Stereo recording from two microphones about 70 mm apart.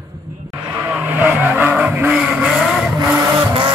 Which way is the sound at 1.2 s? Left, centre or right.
Right.